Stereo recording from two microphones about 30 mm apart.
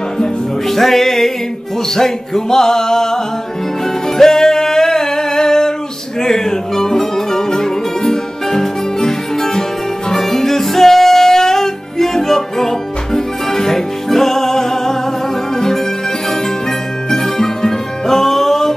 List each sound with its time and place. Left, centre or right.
0.7 s music: centre
4.2 s music: centre
17.1 s music: centre